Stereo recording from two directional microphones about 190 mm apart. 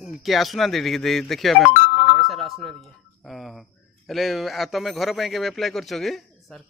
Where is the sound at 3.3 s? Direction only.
Centre (ahead or behind).